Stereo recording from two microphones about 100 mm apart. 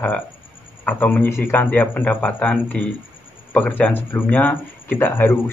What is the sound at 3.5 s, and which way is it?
Speech, 15° left (ahead or behind).